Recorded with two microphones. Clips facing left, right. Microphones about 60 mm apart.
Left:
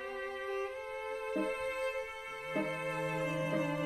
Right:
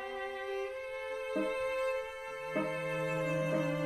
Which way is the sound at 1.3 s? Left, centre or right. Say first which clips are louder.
Right 2 dB; right.